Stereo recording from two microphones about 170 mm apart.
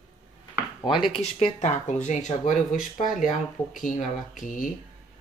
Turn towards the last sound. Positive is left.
turn(degrees=50)  # may be behind; listen again after turning